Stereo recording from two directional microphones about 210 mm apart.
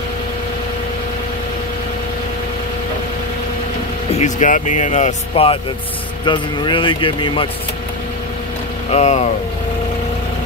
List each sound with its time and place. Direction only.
4.2 s speech: 35° left (ahead or behind)
8.9 s speech: 30° left (ahead or behind)